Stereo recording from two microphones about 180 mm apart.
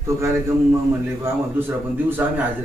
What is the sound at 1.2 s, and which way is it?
Speech, 10° right (ahead or behind).